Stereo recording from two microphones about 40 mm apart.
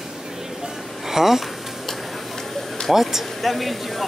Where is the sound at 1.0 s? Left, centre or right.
Centre.